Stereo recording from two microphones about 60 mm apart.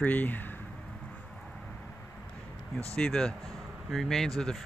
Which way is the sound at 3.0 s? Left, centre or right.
Centre.